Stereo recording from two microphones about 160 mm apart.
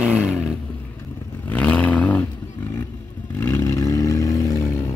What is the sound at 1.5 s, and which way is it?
Vehicle, 10° left (ahead or behind).